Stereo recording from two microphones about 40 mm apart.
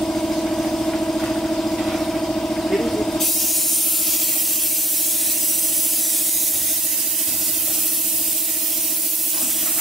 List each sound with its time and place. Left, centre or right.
0.0 s vehicle: left